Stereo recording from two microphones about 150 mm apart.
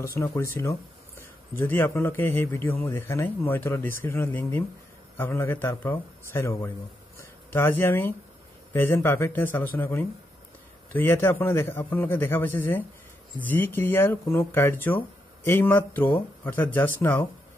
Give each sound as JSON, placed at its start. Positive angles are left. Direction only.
{"t": 0.0, "sound": "speech", "side_deg": 20}
{"t": 7.2, "sound": "a sound", "side_deg": 15}
{"t": 8.7, "sound": "speech", "side_deg": 15}